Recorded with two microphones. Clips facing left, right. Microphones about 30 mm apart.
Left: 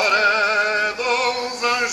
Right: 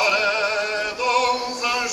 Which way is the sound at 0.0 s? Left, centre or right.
Centre.